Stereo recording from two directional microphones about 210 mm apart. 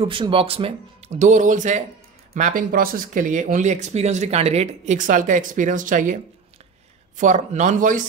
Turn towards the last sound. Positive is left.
turn(degrees=-40)  # may be behind; listen again after turning